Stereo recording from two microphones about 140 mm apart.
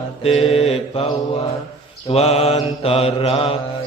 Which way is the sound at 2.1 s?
50° left (ahead or behind).